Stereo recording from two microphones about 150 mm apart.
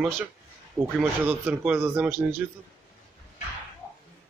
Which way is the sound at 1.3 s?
10° right (ahead or behind).